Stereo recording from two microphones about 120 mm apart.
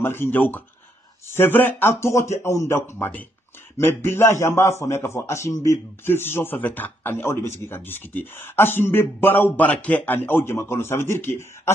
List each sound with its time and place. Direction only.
0.0 s a man's voice: 20° left (ahead or behind)